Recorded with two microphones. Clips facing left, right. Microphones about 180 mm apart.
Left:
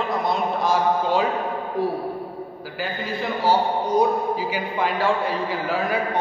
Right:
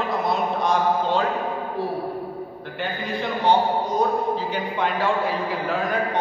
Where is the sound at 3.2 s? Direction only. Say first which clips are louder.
Right 1 dB; 5° left (ahead or behind).